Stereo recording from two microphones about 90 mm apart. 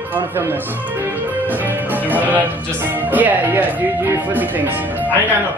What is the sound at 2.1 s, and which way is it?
Speech, 20° right (ahead or behind).